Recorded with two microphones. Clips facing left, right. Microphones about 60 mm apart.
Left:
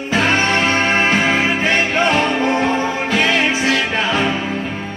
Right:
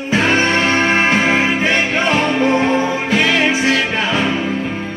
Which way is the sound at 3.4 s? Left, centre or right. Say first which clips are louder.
Right 2 dB; right.